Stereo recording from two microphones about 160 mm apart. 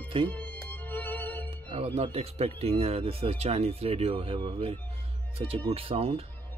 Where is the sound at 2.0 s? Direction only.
40° right (ahead or behind).